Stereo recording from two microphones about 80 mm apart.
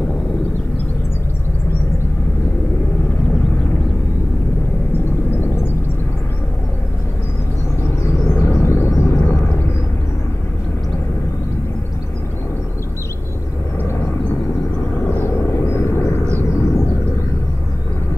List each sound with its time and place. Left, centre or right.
7.8 s vehicle: left
13.8 s vehicle: left